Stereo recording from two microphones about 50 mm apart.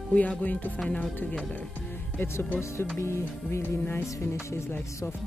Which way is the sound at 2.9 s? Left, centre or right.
Left.